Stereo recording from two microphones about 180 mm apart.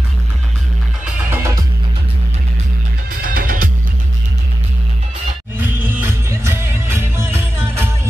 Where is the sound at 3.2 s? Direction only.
50° right (ahead or behind).